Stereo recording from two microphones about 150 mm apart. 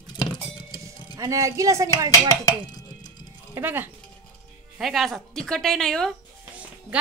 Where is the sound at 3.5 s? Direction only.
15° right (ahead or behind).